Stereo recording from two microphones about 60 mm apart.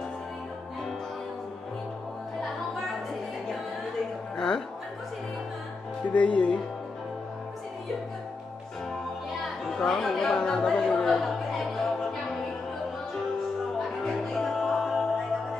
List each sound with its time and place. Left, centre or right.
4.4 s music: centre
6.1 s speech: left
9.7 s chatter: centre
10.3 s music: centre
13.7 s music: centre